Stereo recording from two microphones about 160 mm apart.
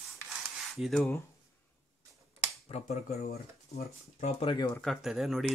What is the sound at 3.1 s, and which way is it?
Speech, 70° left (ahead or behind).